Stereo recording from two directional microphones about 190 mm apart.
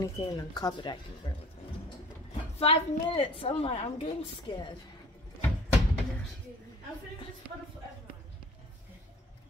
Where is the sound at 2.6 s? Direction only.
30° left (ahead or behind).